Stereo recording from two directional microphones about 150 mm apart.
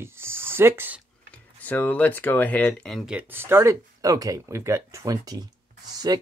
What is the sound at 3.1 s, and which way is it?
Speech, 15° right (ahead or behind).